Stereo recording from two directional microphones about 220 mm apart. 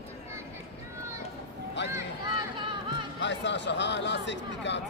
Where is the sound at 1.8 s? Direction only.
55° left (ahead or behind).